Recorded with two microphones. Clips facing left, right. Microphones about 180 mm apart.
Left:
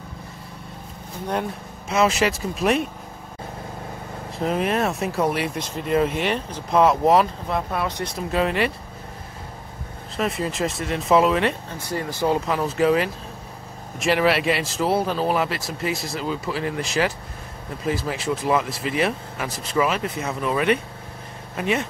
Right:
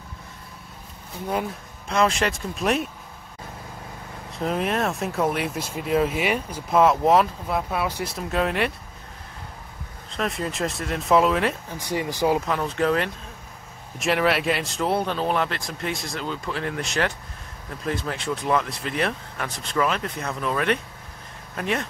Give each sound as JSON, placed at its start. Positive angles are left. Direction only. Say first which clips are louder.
{"t": 1.3, "sound": "speech", "louder": "left 1 dB", "side_deg": 0}
{"t": 4.4, "sound": "speech", "louder": "left 2 dB", "side_deg": 0}
{"t": 10.1, "sound": "speech", "louder": "left 2 dB", "side_deg": 0}
{"t": 11.8, "sound": "speech", "louder": "right 1 dB", "side_deg": -15}
{"t": 12.4, "sound": "speech", "louder": "left 2 dB", "side_deg": 5}